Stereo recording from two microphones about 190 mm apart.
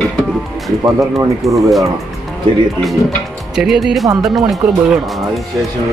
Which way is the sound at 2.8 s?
Centre (ahead or behind).